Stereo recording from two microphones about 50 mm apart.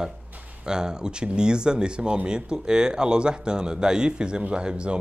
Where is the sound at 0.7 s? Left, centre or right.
Centre.